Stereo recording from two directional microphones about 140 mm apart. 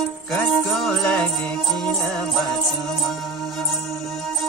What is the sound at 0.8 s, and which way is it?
Music, 5° left (ahead or behind).